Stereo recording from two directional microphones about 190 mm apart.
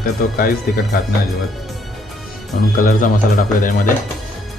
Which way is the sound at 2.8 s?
45° left (ahead or behind).